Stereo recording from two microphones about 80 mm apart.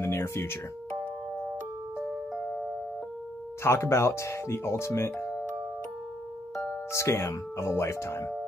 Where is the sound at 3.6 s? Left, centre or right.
Left.